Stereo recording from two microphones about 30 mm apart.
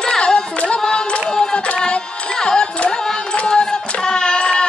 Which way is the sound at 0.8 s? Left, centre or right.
Left.